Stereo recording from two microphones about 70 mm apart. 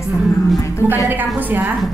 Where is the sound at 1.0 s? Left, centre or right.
Right.